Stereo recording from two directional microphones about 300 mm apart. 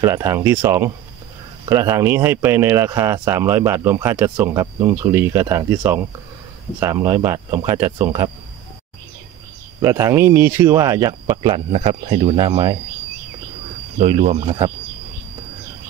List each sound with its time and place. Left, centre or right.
0.0 s speech: centre
9.8 s speech: centre
13.9 s speech: right